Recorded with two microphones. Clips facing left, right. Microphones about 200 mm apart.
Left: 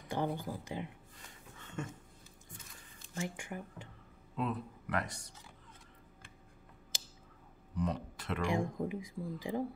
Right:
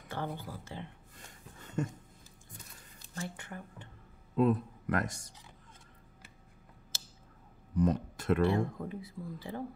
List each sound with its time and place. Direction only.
0.1 s speech: 15° left (ahead or behind)
1.6 s a sound: 40° right (ahead or behind)
3.2 s speech: 15° left (ahead or behind)
4.4 s speech: 45° right (ahead or behind)
6.9 s a sound: 15° left (ahead or behind)
7.7 s speech: 45° right (ahead or behind)
8.4 s speech: 15° left (ahead or behind)